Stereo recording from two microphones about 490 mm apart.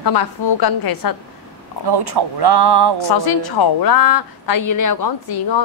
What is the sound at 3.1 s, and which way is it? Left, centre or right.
Speech, left.